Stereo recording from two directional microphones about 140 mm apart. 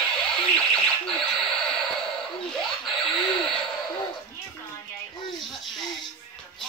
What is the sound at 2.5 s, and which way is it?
Snicker, 5° left (ahead or behind).